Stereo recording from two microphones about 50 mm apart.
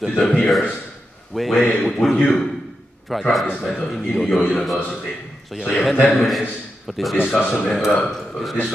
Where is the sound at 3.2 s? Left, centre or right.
Centre.